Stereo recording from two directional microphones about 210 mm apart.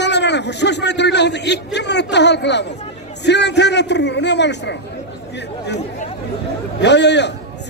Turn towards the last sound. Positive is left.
turn(degrees=55)  # may be behind; listen again after turning